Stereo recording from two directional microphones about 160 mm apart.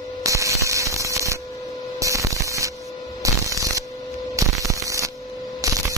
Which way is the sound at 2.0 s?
20° right (ahead or behind).